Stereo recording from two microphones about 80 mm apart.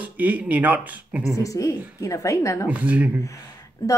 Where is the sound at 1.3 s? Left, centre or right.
Left.